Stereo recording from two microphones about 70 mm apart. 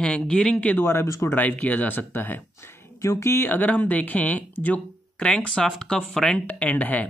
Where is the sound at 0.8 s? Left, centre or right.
Left.